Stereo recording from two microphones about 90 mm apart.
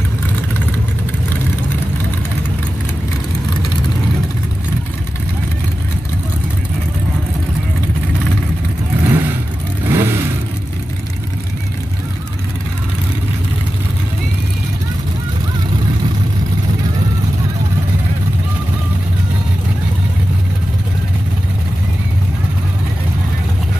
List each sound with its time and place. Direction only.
9.0 s vehicle: 25° right (ahead or behind)